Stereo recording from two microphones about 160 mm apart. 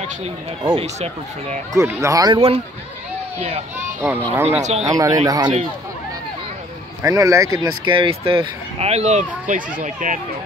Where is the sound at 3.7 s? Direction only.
10° right (ahead or behind).